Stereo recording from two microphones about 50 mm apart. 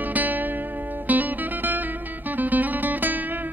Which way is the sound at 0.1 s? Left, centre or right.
Right.